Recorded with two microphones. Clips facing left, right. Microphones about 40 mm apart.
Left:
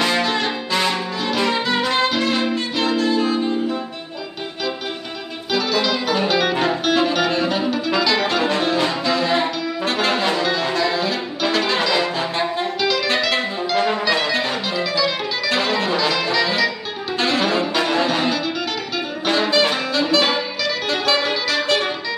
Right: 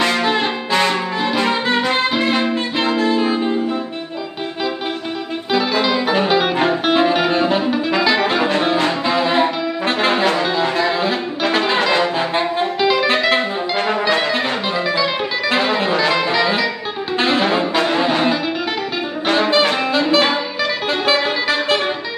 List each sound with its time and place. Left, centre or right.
0.2 s brass instrument: right
1.9 s music: right
5.5 s music: right
9.0 s brass instrument: right
13.8 s music: centre